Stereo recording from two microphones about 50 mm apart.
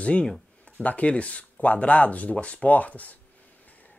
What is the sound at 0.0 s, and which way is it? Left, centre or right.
Speech, left.